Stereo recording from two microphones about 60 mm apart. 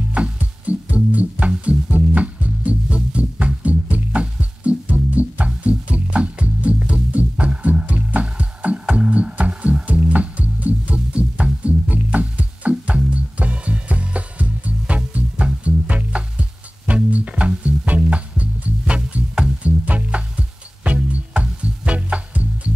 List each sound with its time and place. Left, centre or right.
0.1 s music: right